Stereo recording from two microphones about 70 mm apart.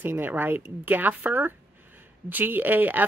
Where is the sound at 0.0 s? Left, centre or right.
Right.